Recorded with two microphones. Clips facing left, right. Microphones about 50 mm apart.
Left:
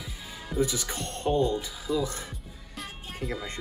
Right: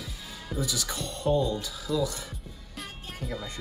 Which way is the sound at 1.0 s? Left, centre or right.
Left.